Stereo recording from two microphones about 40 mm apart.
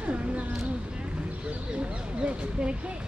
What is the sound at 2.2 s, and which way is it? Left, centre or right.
Speech, right.